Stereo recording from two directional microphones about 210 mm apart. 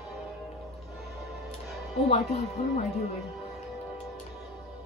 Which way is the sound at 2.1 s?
30° left (ahead or behind).